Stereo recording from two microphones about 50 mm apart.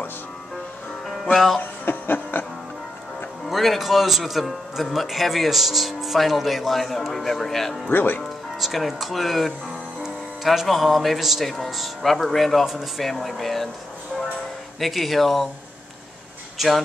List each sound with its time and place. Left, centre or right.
1.3 s speech: centre
1.6 s chuckle: left
3.4 s a man's voice: centre
7.9 s speech: left
8.5 s speech: centre
14.8 s speech: centre
16.5 s speech: centre